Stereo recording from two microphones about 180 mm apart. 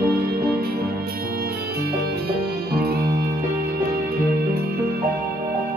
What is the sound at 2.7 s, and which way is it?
Music, 60° right (ahead or behind).